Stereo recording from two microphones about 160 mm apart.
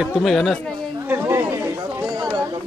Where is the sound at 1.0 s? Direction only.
15° right (ahead or behind).